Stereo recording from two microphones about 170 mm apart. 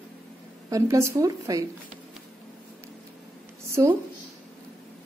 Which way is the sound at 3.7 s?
15° right (ahead or behind).